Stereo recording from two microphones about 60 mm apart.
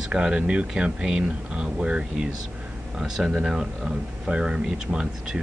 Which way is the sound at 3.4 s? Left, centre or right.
Centre.